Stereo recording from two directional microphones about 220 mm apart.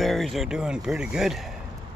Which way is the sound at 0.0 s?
Centre (ahead or behind).